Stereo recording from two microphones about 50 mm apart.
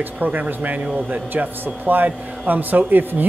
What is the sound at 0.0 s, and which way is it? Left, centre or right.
Speech, right.